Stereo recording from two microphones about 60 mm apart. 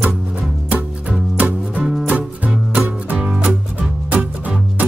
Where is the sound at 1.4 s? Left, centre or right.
Right.